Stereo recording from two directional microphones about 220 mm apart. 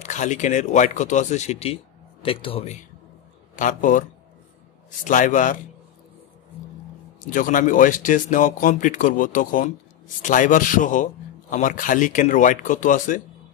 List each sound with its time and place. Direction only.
0.0 s a man's voice: 35° left (ahead or behind)
5.0 s speech: 35° left (ahead or behind)
7.2 s speech: 35° left (ahead or behind)